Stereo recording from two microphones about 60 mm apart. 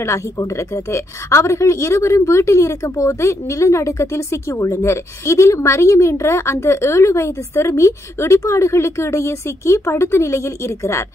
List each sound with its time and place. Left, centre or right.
0.5 s a woman's voice: left